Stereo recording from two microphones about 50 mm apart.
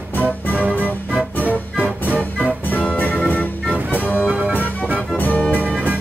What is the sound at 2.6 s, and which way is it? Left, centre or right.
Music, left.